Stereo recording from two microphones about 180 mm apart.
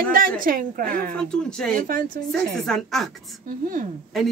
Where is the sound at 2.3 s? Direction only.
Centre (ahead or behind).